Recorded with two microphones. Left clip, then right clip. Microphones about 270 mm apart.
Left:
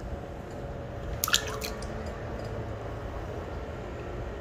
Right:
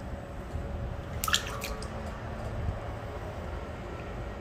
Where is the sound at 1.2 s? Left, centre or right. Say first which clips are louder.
Left 2 dB; centre.